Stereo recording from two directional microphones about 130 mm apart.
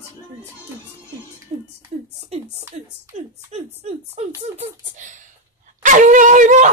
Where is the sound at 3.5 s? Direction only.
60° right (ahead or behind).